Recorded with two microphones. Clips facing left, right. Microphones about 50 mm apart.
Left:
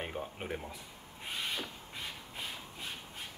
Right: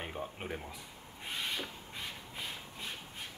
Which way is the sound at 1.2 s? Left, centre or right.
Centre.